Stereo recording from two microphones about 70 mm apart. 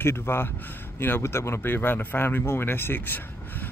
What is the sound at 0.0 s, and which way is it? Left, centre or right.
Speech, left.